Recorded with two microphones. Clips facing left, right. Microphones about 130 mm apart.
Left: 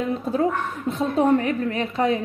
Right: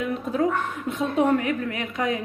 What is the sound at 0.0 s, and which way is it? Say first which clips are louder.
Speech: left 2 dB; 30° left (ahead or behind).